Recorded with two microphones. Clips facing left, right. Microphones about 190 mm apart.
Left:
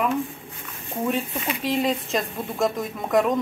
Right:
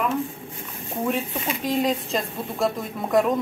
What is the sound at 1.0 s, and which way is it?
Speech, centre (ahead or behind).